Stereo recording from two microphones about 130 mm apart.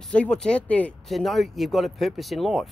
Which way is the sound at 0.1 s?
10° left (ahead or behind).